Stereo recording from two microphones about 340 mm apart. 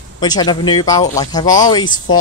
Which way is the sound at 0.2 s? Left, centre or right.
Centre.